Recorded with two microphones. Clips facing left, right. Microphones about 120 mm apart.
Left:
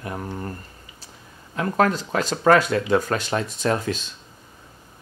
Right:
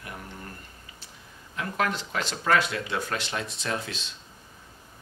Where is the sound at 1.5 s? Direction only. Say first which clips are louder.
Left 8 dB; 40° left (ahead or behind).